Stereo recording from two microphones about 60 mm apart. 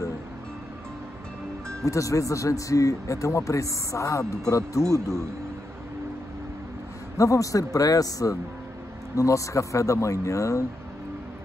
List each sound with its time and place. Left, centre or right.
1.9 s a man's voice: left
7.2 s a man's voice: left
9.1 s speech: left